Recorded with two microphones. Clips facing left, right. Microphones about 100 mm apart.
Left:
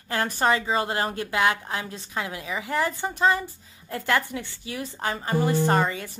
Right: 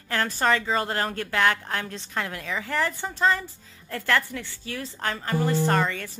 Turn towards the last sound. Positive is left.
turn(degrees=15)  # may be behind; listen again after turning